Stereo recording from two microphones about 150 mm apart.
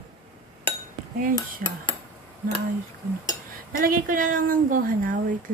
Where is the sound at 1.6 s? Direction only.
75° right (ahead or behind).